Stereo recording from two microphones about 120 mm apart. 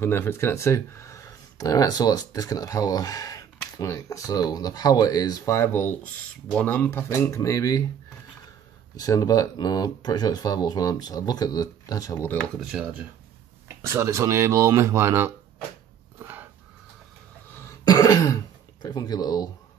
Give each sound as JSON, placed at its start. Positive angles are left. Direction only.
{"t": 0.0, "sound": "speech", "side_deg": 20}
{"t": 8.9, "sound": "speech", "side_deg": 30}
{"t": 12.2, "sound": "dishes", "side_deg": 15}
{"t": 12.5, "sound": "speech", "side_deg": -5}
{"t": 13.7, "sound": "speech", "side_deg": -20}
{"t": 16.2, "sound": "a sound", "side_deg": -15}
{"t": 17.8, "sound": "speech", "side_deg": 30}